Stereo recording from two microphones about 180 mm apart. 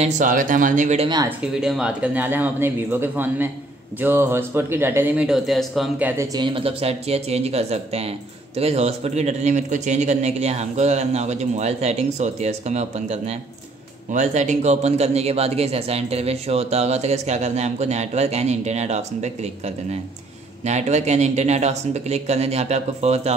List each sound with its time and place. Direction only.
0.0 s speech: 45° right (ahead or behind)
1.0 s speech: 25° right (ahead or behind)
1.5 s speech: 5° right (ahead or behind)
6.3 s speech: 30° right (ahead or behind)